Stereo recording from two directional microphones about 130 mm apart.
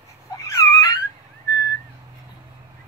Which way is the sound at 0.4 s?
25° left (ahead or behind).